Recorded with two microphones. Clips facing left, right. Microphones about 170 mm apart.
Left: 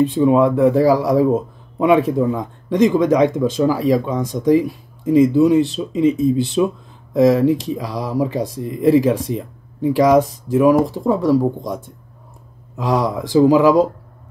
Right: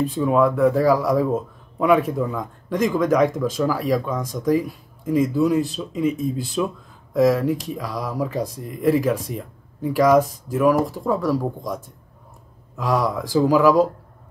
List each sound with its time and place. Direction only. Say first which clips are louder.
0.0 s speech: left 5 dB; 25° left (ahead or behind)
12.7 s speech: left 3 dB; 25° left (ahead or behind)